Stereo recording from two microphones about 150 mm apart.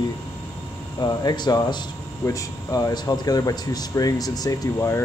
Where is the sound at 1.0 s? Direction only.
30° left (ahead or behind).